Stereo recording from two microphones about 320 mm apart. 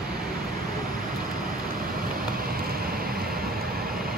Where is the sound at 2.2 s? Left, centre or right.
Right.